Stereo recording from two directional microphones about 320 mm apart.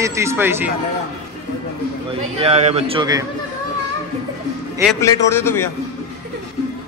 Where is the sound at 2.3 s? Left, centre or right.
Centre.